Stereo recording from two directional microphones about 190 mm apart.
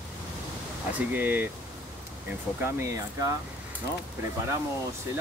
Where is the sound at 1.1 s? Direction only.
10° right (ahead or behind).